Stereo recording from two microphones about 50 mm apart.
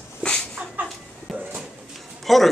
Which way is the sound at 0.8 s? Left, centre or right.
Right.